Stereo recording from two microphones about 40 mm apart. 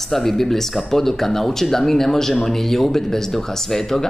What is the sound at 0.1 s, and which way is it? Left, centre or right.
Speech, centre.